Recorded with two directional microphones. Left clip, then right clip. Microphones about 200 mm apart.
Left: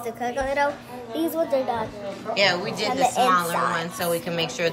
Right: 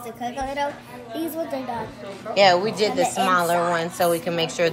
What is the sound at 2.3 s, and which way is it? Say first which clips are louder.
A woman's voice: right 5 dB; centre (ahead or behind).